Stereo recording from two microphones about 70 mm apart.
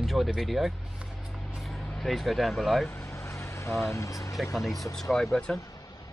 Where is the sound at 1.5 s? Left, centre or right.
Centre.